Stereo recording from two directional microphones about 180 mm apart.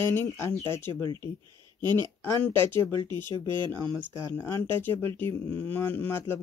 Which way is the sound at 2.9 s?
25° right (ahead or behind).